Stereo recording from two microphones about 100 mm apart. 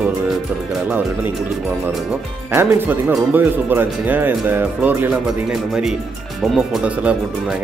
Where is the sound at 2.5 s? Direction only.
25° right (ahead or behind).